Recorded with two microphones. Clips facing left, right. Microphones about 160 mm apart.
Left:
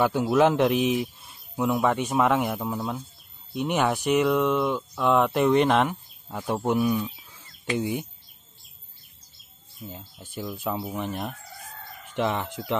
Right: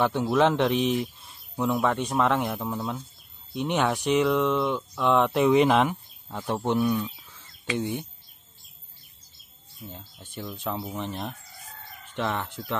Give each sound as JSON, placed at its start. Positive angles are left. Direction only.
{"t": 0.0, "sound": "speech", "side_deg": 5}
{"t": 9.8, "sound": "speech", "side_deg": 5}